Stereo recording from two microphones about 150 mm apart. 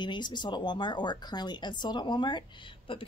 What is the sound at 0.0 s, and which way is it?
Speech, 30° left (ahead or behind).